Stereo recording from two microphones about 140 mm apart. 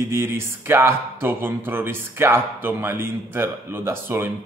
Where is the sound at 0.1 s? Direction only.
15° right (ahead or behind).